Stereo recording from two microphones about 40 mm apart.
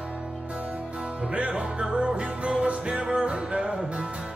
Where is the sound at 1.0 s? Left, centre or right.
Right.